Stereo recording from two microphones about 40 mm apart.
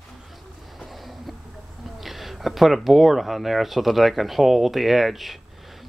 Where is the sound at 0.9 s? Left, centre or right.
Centre.